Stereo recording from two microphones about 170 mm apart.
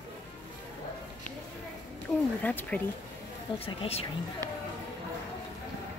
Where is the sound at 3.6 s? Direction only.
35° left (ahead or behind).